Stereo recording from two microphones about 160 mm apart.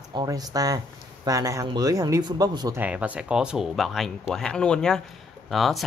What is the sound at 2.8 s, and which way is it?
Speech, 10° right (ahead or behind).